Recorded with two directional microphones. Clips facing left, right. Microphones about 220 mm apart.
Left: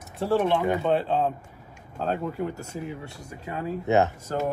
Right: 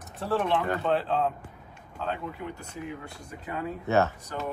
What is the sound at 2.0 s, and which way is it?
Speech, 40° left (ahead or behind).